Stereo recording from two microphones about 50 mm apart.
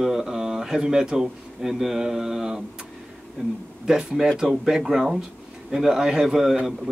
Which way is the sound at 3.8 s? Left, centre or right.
Centre.